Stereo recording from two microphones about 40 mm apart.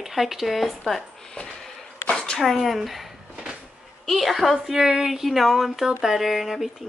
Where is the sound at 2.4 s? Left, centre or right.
Centre.